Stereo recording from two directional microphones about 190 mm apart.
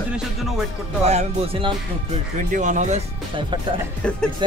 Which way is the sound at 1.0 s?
35° right (ahead or behind).